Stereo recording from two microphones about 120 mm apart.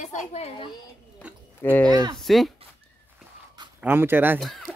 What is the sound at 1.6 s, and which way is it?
Speech, 15° left (ahead or behind).